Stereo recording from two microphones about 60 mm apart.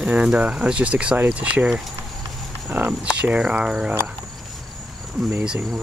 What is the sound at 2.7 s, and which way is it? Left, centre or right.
Speech, right.